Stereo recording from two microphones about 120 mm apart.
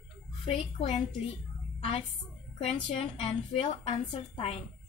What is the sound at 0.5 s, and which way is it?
A woman's voice, 50° left (ahead or behind).